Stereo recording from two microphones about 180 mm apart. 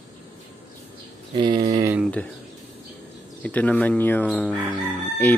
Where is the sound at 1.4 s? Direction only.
25° right (ahead or behind).